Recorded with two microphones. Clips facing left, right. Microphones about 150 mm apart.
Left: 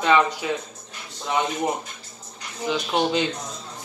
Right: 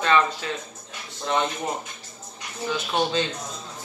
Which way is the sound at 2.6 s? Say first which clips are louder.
Left 2 dB; 15° left (ahead or behind).